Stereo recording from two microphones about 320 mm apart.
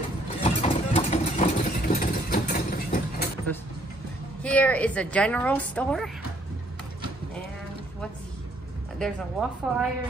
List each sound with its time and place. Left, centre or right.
0.4 s vehicle: centre
4.4 s a woman's voice: centre
8.9 s a woman's voice: centre